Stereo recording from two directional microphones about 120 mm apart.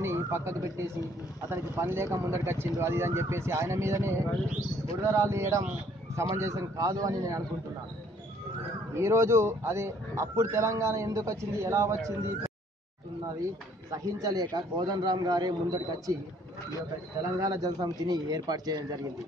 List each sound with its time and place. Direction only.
0.0 s a man's voice: 20° right (ahead or behind)
8.9 s a man's voice: 25° right (ahead or behind)
13.9 s a man's voice: 30° right (ahead or behind)
17.4 s a man's voice: 30° right (ahead or behind)